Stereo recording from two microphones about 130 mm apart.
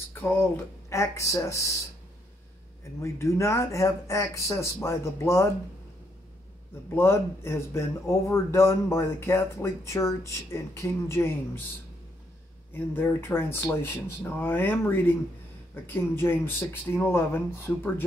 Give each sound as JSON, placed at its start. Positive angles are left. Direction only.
{"t": 0.1, "sound": "speech", "side_deg": 15}
{"t": 3.0, "sound": "speech", "side_deg": 25}
{"t": 7.0, "sound": "speech", "side_deg": 20}
{"t": 12.7, "sound": "speech", "side_deg": 15}